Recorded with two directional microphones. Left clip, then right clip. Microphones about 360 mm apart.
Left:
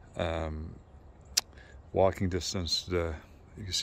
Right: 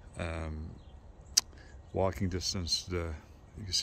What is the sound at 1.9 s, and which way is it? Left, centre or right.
Speech, centre.